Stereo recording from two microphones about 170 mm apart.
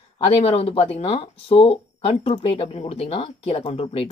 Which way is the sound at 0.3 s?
35° left (ahead or behind).